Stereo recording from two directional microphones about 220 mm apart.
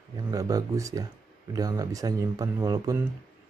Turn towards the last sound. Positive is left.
turn(degrees=-15)  # may be behind; listen again after turning